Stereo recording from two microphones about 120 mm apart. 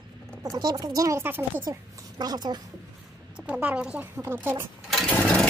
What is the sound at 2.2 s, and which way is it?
Speech, 35° right (ahead or behind).